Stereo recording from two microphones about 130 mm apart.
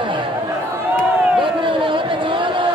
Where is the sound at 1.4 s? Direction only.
40° right (ahead or behind).